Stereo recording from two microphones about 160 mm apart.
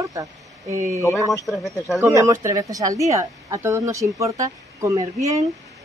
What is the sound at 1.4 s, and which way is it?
Speech, centre (ahead or behind).